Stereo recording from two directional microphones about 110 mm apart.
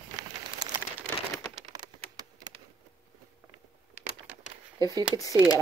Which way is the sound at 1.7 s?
40° right (ahead or behind).